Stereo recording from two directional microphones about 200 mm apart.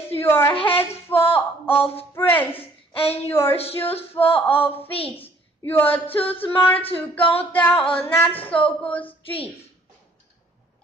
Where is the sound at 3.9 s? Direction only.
30° left (ahead or behind).